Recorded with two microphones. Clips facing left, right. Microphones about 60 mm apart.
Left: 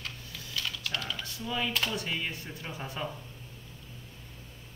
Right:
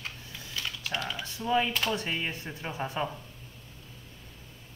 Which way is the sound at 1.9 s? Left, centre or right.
Right.